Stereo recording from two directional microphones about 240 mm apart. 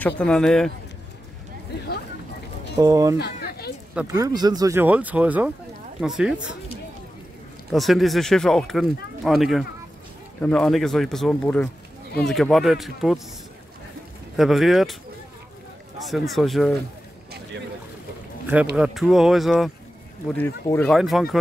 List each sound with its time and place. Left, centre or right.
0.2 s speech: centre
2.7 s speech: centre
3.2 s a sound: left
3.9 s speech: centre
7.7 s speech: centre
14.3 s speech: centre
16.0 s speech: centre
18.8 s speech: centre